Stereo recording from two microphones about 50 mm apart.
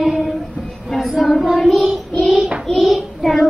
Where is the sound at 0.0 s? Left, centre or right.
Centre.